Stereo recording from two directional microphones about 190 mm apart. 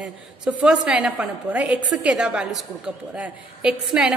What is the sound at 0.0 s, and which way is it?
A woman's voice, 5° right (ahead or behind).